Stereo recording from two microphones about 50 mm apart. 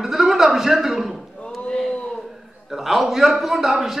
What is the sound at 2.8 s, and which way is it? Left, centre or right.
A man's voice, centre.